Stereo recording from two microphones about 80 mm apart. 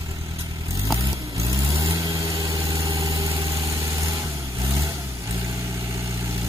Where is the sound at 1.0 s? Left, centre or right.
Right.